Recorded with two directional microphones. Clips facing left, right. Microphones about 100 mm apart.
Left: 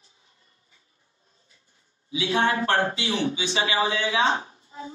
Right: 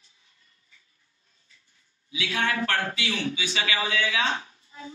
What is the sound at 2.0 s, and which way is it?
Speech, 30° left (ahead or behind).